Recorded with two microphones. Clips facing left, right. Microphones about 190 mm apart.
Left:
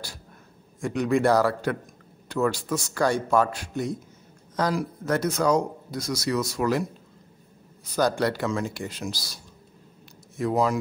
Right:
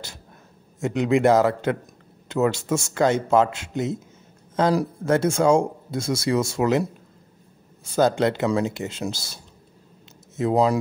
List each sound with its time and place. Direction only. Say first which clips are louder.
0.7 s speech: right 3 dB; 25° right (ahead or behind)
7.8 s a man's voice: right 4 dB; 25° right (ahead or behind)